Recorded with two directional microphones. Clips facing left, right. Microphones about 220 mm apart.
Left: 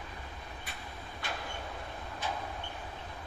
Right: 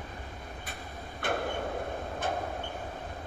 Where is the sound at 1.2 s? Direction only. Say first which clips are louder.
Right 10 dB; 55° right (ahead or behind).